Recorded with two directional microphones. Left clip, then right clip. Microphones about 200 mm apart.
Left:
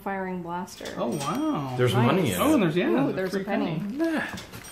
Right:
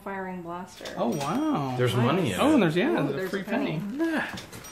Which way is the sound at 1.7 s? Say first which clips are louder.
Left 4 dB; 10° left (ahead or behind).